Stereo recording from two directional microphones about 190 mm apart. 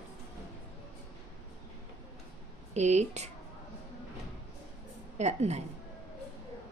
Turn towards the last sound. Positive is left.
turn(degrees=-35)  # may be behind; listen again after turning